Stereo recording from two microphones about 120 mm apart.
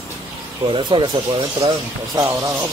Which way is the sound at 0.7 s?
40° right (ahead or behind).